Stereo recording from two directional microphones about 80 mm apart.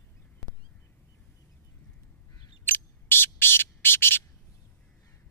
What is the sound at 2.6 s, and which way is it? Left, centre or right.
Bird, left.